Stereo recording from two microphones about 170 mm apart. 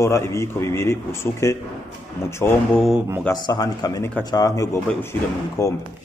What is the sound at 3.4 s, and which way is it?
Speech, 25° left (ahead or behind).